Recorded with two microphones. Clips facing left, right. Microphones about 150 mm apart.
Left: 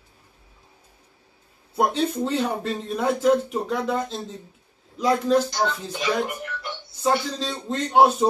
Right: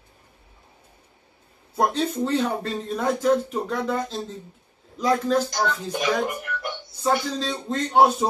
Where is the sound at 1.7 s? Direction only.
10° left (ahead or behind).